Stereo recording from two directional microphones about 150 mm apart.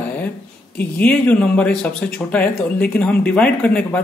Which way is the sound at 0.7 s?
10° left (ahead or behind).